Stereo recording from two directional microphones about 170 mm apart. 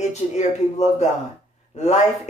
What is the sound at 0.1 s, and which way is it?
Speech, 40° left (ahead or behind).